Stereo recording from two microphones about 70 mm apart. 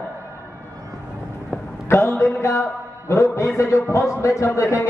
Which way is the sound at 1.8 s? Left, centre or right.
Left.